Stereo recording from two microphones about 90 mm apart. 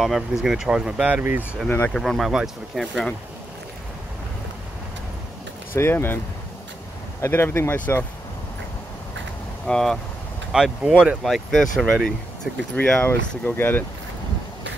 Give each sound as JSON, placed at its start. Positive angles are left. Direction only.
{"t": 0.0, "sound": "speech", "side_deg": -5}
{"t": 2.0, "sound": "speech", "side_deg": 0}
{"t": 5.8, "sound": "speech", "side_deg": 25}
{"t": 7.2, "sound": "speech", "side_deg": 25}
{"t": 9.7, "sound": "speech", "side_deg": 5}
{"t": 10.5, "sound": "speech", "side_deg": -5}
{"t": 12.7, "sound": "speech", "side_deg": 15}